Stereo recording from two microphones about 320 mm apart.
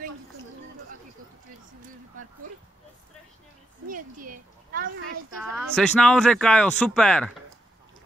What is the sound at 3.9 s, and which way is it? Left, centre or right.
Speech, right.